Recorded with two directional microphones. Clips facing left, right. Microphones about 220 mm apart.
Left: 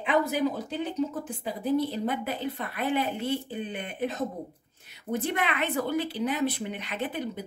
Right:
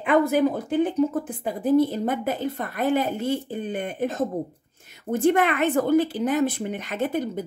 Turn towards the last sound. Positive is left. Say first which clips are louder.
# right 6 dB
turn(degrees=-45)  # may be behind; listen again after turning